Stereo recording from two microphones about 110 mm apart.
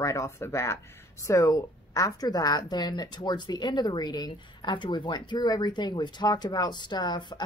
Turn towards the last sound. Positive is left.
turn(degrees=40)  # may be behind; listen again after turning